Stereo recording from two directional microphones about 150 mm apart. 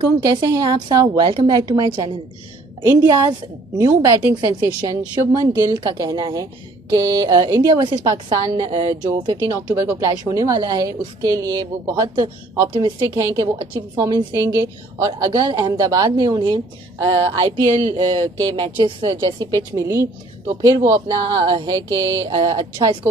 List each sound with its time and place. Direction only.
0.2 s a woman's voice: 25° right (ahead or behind)
9.8 s a woman's voice: 20° right (ahead or behind)
12.7 s a woman's voice: 30° right (ahead or behind)
21.3 s a woman's voice: 30° right (ahead or behind)